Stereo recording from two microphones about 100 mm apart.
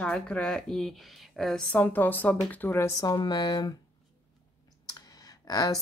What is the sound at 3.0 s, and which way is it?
Speech, 40° left (ahead or behind).